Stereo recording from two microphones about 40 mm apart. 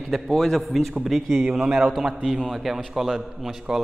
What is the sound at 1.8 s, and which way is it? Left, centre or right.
A man's voice, centre.